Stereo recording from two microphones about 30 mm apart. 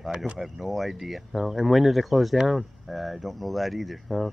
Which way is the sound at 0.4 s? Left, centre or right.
Centre.